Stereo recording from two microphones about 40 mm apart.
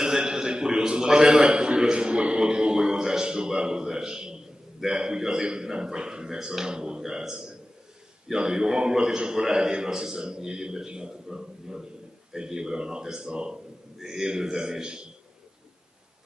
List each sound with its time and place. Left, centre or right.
0.0 s a man's voice: centre